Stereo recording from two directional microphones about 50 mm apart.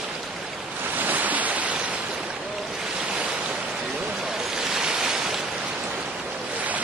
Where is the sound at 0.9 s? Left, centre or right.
Right.